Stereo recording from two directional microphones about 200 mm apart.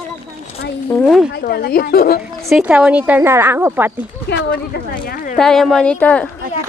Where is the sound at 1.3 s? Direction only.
50° left (ahead or behind).